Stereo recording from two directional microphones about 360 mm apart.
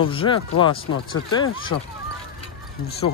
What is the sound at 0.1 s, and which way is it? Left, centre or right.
Speech, centre.